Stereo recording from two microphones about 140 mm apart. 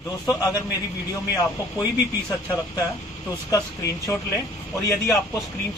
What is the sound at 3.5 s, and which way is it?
Speech, 25° left (ahead or behind).